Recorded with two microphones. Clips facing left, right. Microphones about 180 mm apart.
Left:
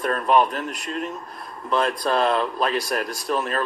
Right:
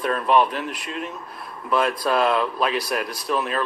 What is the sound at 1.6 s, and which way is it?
Speech, 5° right (ahead or behind).